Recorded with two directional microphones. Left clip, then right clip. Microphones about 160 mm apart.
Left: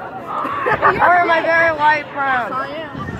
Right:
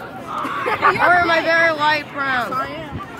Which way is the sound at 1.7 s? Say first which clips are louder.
Left 3 dB; 50° right (ahead or behind).